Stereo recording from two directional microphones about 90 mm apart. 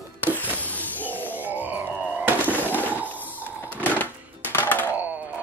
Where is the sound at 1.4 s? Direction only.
20° right (ahead or behind).